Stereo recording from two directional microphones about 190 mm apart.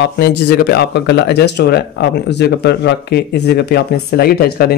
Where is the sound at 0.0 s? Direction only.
60° left (ahead or behind).